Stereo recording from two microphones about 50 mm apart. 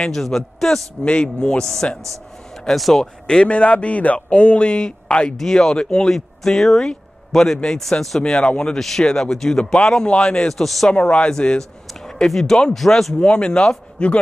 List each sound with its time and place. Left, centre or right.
0.0 s speech: centre
1.0 s speech: left
2.7 s speech: centre
3.4 s speech: left
6.1 s speech: centre
8.3 s speech: centre
10.6 s speech: centre
10.9 s speech: left; by 13.1 s centre
13.2 s speech: centre